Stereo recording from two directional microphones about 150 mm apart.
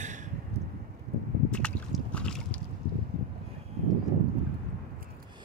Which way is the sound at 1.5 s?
5° left (ahead or behind).